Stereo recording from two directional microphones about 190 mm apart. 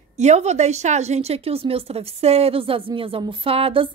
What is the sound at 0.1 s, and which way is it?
Speech, 35° right (ahead or behind).